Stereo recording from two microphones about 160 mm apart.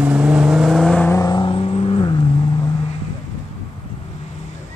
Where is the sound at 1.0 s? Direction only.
20° left (ahead or behind).